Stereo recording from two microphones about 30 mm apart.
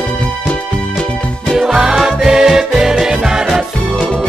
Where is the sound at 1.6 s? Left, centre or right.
Right.